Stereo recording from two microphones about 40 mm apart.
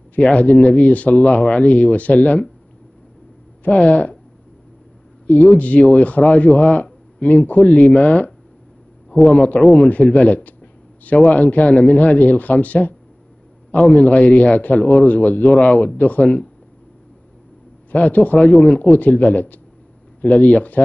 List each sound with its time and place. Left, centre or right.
0.1 s speech: left
3.6 s speech: left
5.2 s speech: left
17.9 s speech: left